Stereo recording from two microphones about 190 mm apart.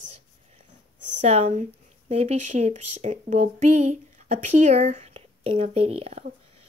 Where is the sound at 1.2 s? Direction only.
35° right (ahead or behind).